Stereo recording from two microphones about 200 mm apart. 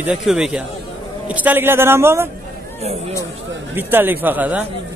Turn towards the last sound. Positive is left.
turn(degrees=-10)  # may be behind; listen again after turning